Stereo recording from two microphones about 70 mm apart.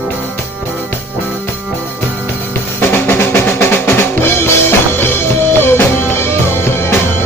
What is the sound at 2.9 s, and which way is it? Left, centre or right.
Drum, left.